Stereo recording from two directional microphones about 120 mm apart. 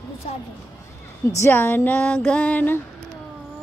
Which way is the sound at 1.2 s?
25° left (ahead or behind).